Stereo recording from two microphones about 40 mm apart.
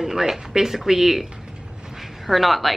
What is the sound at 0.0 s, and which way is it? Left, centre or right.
Speech, centre.